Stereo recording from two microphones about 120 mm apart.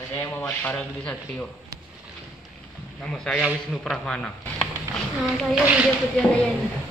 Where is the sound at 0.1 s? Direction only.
20° left (ahead or behind).